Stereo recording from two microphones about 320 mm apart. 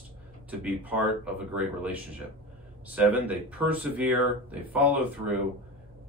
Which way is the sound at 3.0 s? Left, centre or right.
Centre.